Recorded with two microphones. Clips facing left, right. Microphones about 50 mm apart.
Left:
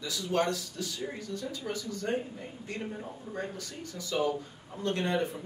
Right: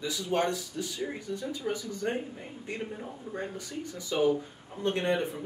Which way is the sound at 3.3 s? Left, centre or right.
Right.